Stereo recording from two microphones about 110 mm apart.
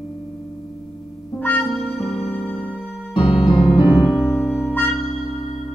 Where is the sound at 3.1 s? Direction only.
50° left (ahead or behind).